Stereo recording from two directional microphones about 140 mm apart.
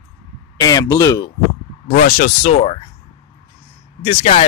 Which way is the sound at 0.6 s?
25° left (ahead or behind).